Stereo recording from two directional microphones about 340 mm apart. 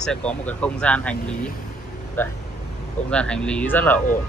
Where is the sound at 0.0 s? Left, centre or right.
Centre.